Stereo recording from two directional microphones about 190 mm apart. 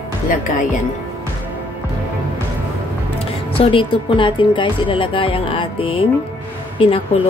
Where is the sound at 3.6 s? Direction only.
25° left (ahead or behind).